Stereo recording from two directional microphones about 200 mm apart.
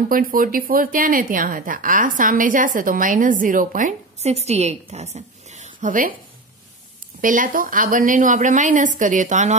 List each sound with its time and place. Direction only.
0.1 s a woman's voice: 45° right (ahead or behind)
7.2 s a woman's voice: 40° right (ahead or behind)